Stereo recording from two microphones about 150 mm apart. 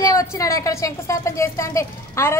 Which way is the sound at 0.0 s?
20° left (ahead or behind).